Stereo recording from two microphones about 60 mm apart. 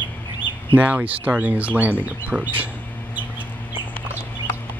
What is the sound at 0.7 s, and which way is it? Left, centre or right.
Speech, right.